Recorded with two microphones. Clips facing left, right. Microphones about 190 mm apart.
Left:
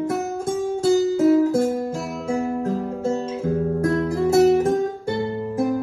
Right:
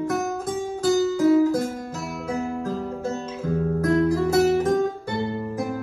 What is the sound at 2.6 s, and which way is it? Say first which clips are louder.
Music: left 4 dB; 30° left (ahead or behind).